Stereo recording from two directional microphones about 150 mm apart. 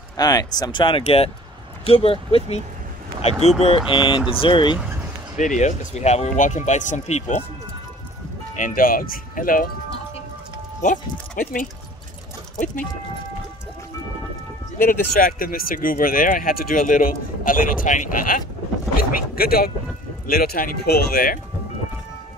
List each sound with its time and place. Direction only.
0.2 s speech: 25° left (ahead or behind)
3.6 s speech: 35° left (ahead or behind)
5.4 s speech: 55° left (ahead or behind)
8.5 s speech: 65° left (ahead or behind)
10.8 s speech: 60° left (ahead or behind)
14.8 s speech: 70° left (ahead or behind)
18.9 s speech: 85° left